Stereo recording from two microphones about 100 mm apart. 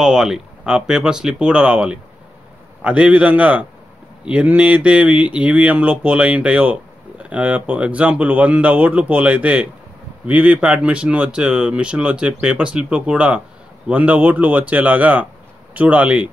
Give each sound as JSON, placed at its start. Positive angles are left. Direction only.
{"t": 0.0, "sound": "speech", "side_deg": -5}